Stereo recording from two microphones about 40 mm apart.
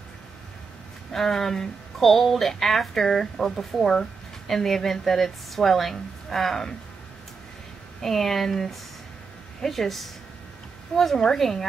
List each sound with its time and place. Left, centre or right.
1.1 s speech: centre
8.0 s a woman's voice: centre
11.1 s speech: centre